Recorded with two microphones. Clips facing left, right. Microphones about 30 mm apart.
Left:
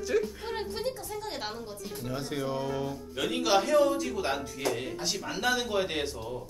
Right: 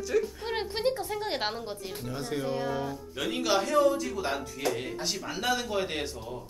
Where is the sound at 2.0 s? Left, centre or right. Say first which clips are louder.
Even; centre.